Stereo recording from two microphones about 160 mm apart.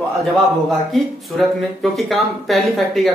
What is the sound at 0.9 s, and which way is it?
Speech, centre (ahead or behind).